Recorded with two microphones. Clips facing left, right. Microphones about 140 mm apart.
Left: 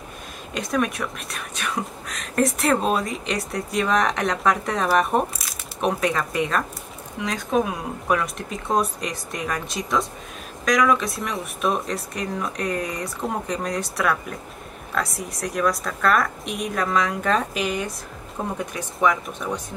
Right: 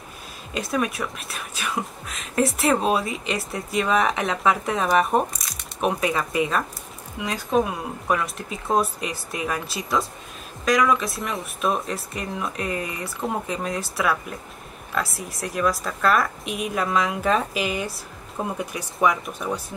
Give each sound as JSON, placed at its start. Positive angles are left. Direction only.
{"t": 0.6, "sound": "speech", "side_deg": -5}